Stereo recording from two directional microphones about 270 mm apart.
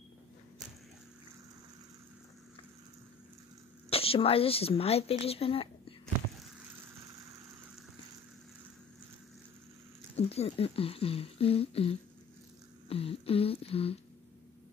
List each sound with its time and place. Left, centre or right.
3.9 s a woman's voice: left
10.1 s speech: left